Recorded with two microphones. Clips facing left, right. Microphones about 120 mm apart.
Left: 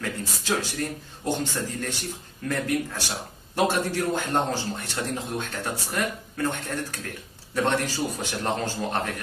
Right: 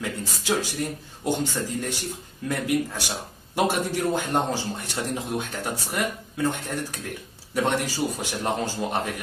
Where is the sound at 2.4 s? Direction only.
10° right (ahead or behind).